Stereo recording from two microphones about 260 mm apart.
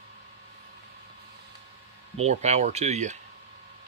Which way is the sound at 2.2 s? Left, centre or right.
Right.